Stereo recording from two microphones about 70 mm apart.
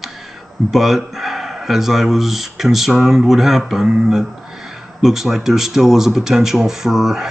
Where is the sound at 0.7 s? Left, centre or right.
Centre.